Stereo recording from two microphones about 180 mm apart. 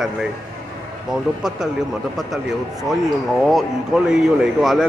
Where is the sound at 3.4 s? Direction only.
Centre (ahead or behind).